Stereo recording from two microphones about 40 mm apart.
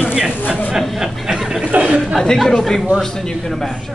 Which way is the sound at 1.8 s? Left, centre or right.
Right.